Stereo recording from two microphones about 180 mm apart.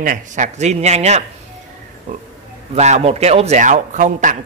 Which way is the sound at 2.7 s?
40° right (ahead or behind).